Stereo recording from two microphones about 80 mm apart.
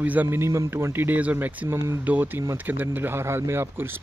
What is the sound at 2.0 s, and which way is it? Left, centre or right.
Speech, right.